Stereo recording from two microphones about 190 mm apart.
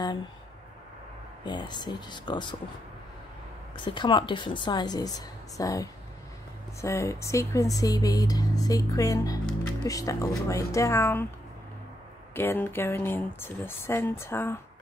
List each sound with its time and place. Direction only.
1.4 s a woman's voice: 25° left (ahead or behind)
3.7 s a woman's voice: 25° left (ahead or behind)
12.4 s speech: 10° left (ahead or behind)